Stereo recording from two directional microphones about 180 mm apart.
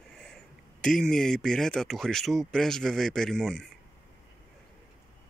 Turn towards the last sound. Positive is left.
turn(degrees=5)  # may be behind; listen again after turning